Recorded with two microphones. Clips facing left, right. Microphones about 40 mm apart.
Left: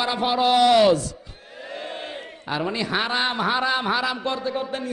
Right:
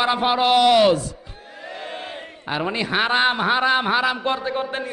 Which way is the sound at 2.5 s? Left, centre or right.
Right.